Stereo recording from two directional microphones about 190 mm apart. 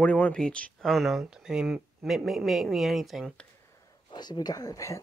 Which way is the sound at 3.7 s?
20° left (ahead or behind).